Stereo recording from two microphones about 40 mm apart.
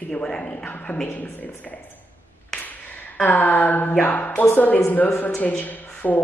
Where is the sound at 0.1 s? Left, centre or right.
Left.